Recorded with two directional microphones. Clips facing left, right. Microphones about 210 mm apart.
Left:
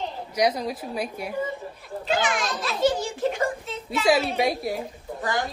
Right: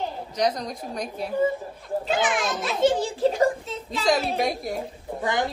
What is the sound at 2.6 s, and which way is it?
Speech, 25° right (ahead or behind).